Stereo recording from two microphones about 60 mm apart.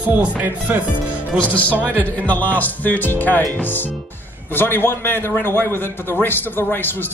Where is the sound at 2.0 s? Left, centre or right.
Left.